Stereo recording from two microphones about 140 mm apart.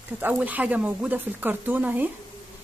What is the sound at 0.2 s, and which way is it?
Speech, 10° right (ahead or behind).